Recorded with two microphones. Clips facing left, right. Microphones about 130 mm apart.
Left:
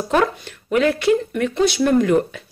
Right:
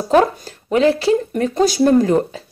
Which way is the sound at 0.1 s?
35° right (ahead or behind).